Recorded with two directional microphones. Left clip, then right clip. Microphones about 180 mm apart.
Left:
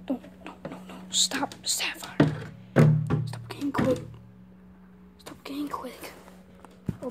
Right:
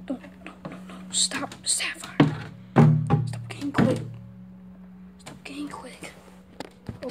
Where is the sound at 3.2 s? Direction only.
15° left (ahead or behind).